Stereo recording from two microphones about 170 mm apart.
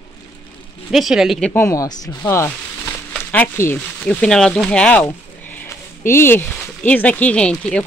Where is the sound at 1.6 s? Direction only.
20° left (ahead or behind).